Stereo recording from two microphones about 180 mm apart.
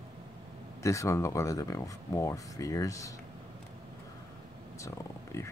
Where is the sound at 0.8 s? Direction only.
15° left (ahead or behind).